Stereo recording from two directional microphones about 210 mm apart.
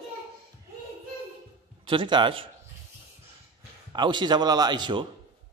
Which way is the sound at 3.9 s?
20° right (ahead or behind).